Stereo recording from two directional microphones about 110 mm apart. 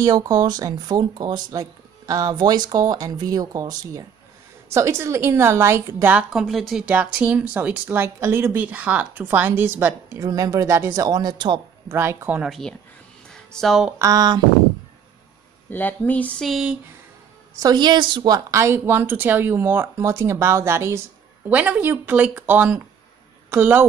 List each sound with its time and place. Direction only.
0.0 s speech: 35° right (ahead or behind); by 10.2 s 20° right (ahead or behind)
10.2 s speech: 30° right (ahead or behind)
11.1 s speech: 40° right (ahead or behind)
11.9 s speech: 25° right (ahead or behind)
12.4 s speech: 5° left (ahead or behind)
13.3 s a sound: 5° left (ahead or behind)
13.9 s speech: 35° right (ahead or behind)
15.7 s speech: 15° left (ahead or behind)
16.4 s speech: 5° right (ahead or behind)
17.6 s speech: 40° right (ahead or behind)
18.6 s speech: 20° right (ahead or behind)